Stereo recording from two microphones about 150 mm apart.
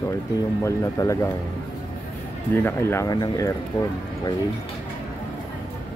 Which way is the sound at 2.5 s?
15° left (ahead or behind).